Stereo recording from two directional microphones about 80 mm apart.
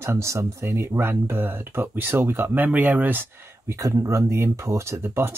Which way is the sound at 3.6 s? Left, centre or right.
Right.